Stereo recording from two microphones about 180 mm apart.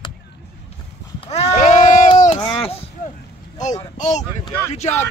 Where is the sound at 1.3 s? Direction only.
40° left (ahead or behind).